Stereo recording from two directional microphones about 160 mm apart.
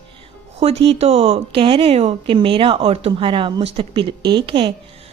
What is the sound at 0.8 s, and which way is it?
Speech, 40° right (ahead or behind).